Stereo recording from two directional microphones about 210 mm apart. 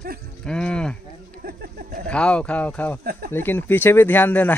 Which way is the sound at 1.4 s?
40° right (ahead or behind).